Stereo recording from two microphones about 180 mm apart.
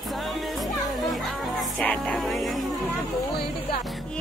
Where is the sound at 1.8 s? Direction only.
5° left (ahead or behind).